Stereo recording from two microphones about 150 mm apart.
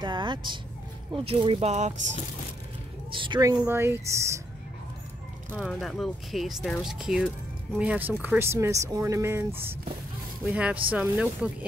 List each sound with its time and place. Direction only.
0.0 s speech: 30° right (ahead or behind); by 2.0 s 50° right (ahead or behind)
3.1 s a woman's voice: 35° right (ahead or behind)
3.3 s speech: 20° right (ahead or behind)
5.6 s speech: 5° left (ahead or behind)